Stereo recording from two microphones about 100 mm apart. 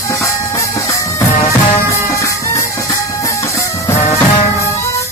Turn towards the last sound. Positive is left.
turn(degrees=90)